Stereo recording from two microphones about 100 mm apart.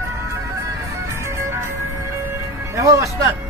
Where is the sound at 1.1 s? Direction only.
25° right (ahead or behind).